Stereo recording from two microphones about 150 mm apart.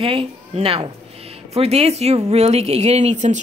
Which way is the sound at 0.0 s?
40° right (ahead or behind).